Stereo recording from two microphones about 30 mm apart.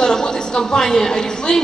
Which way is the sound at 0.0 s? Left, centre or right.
Left.